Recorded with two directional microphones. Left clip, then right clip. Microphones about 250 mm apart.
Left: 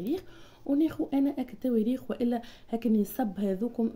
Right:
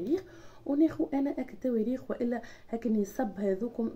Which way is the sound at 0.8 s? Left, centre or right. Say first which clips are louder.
Right 2 dB; left.